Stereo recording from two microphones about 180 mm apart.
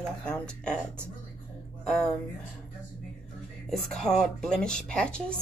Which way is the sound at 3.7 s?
Centre (ahead or behind).